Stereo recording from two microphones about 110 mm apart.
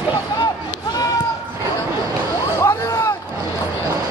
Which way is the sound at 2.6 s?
25° left (ahead or behind).